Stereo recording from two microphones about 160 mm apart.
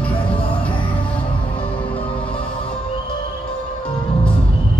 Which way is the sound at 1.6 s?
35° left (ahead or behind).